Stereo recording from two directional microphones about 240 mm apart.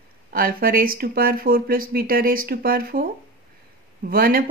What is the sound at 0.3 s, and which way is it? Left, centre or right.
Speech, right.